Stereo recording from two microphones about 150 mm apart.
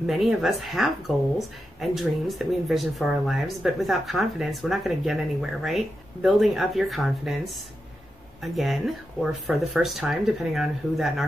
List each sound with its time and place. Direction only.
0.0 s speech: centre (ahead or behind)